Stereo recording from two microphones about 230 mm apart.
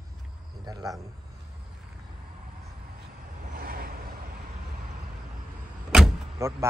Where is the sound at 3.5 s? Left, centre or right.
Right.